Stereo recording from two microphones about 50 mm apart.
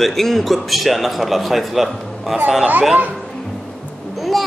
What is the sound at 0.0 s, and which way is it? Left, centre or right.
A child's voice, centre.